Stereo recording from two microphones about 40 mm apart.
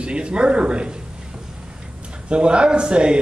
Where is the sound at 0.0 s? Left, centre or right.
Right.